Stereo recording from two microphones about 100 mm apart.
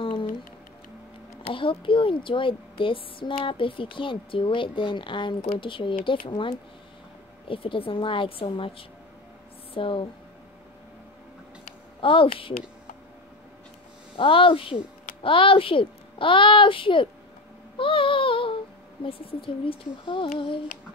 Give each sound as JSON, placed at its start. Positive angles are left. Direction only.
{"t": 0.0, "sound": "music", "side_deg": 55}
{"t": 1.4, "sound": "speech", "side_deg": 60}
{"t": 12.0, "sound": "speech", "side_deg": 60}
{"t": 14.1, "sound": "speech", "side_deg": 60}
{"t": 17.7, "sound": "a sound", "side_deg": 60}
{"t": 19.0, "sound": "speech", "side_deg": 65}